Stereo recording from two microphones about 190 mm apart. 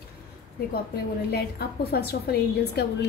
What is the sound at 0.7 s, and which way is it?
A woman's voice, 55° left (ahead or behind).